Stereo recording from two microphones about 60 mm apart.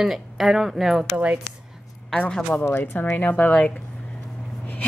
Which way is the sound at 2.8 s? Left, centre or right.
Left.